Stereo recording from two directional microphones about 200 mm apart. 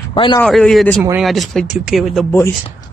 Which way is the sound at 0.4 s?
5° left (ahead or behind).